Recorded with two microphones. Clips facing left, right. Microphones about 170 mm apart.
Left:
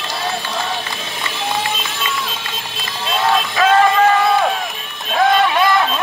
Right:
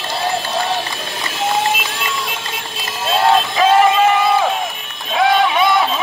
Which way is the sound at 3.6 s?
10° right (ahead or behind).